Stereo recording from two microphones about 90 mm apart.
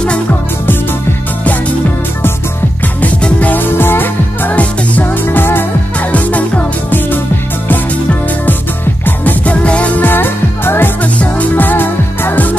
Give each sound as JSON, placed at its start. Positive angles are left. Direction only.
{"t": 3.0, "sound": "music", "side_deg": 15}